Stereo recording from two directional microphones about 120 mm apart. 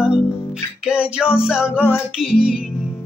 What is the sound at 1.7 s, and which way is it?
Music, 15° left (ahead or behind).